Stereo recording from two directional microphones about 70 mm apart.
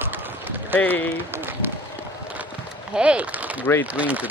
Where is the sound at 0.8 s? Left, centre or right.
Left.